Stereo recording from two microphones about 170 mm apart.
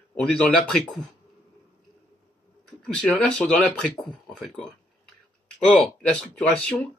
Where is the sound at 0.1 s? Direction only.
5° left (ahead or behind).